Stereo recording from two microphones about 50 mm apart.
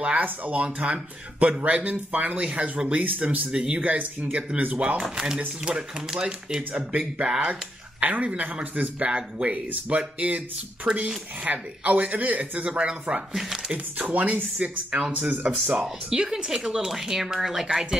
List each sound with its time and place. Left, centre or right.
0.0 s speech: right
8.0 s speech: right
13.3 s speech: centre
13.9 s speech: right; by 17.8 s centre